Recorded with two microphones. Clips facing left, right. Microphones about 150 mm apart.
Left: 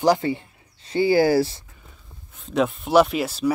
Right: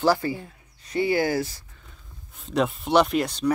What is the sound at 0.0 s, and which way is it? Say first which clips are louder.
Speech: left 3 dB; 20° left (ahead or behind).